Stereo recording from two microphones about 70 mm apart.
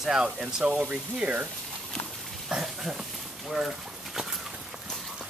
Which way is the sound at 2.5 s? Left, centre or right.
Centre.